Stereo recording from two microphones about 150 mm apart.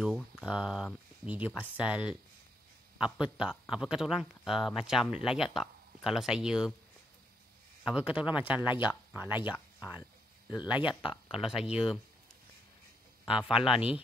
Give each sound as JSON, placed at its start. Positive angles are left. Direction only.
{"t": 0.0, "sound": "a man's voice", "side_deg": 0}
{"t": 7.8, "sound": "a man's voice", "side_deg": -5}
{"t": 9.3, "sound": "speech", "side_deg": 30}
{"t": 10.6, "sound": "speech", "side_deg": 30}
{"t": 11.4, "sound": "speech", "side_deg": -5}
{"t": 13.2, "sound": "a man's voice", "side_deg": -5}